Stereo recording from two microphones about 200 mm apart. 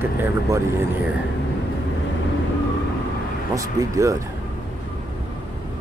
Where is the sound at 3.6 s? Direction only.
15° right (ahead or behind).